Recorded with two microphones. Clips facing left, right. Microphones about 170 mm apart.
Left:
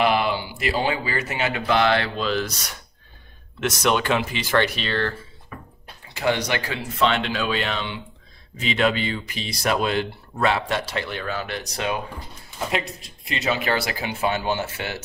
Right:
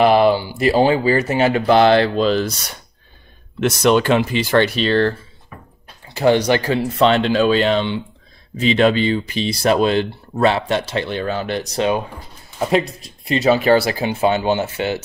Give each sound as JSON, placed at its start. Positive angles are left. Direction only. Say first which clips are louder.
{"t": 0.0, "sound": "speech", "louder": "right 8 dB", "side_deg": -35}
{"t": 3.6, "sound": "speech", "louder": "right 7 dB", "side_deg": -30}
{"t": 6.1, "sound": "speech", "louder": "right 8 dB", "side_deg": -35}
{"t": 13.3, "sound": "speech", "louder": "right 10 dB", "side_deg": -35}